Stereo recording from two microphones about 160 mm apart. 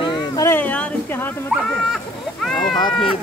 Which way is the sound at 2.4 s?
Centre (ahead or behind).